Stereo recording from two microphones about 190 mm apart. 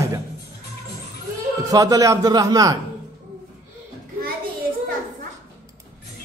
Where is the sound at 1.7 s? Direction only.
20° right (ahead or behind).